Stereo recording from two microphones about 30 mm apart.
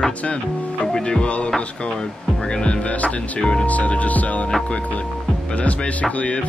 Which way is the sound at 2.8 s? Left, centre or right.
Left.